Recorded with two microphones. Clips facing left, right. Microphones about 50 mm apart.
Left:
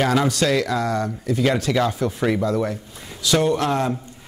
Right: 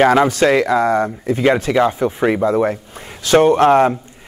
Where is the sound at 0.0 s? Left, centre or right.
Right.